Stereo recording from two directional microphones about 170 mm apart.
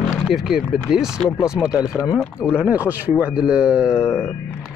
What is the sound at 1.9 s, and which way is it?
Speech, 20° left (ahead or behind).